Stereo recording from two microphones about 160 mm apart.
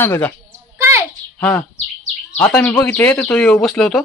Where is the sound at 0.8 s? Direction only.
20° right (ahead or behind).